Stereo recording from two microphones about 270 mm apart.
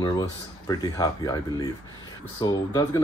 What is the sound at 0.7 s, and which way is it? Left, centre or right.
Speech, centre.